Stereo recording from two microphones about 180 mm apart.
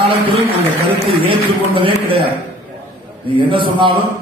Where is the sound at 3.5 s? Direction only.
30° right (ahead or behind).